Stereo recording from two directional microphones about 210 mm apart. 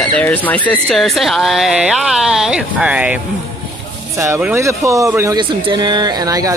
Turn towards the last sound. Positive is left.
turn(degrees=-15)  # may be behind; listen again after turning